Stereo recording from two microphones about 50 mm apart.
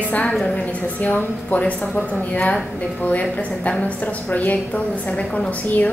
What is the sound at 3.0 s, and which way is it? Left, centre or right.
A woman's voice, left.